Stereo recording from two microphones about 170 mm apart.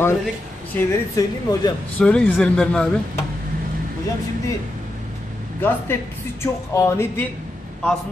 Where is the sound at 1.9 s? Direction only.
5° left (ahead or behind).